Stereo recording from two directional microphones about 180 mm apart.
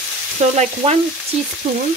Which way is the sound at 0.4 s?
40° right (ahead or behind).